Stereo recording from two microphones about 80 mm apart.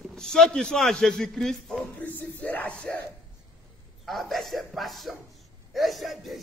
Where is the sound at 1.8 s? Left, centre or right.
Left.